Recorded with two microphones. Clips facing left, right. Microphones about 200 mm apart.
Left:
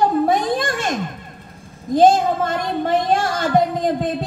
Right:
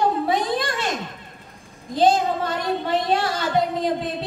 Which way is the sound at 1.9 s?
45° left (ahead or behind).